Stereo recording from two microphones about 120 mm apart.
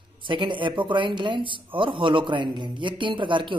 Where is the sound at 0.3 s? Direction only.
45° right (ahead or behind).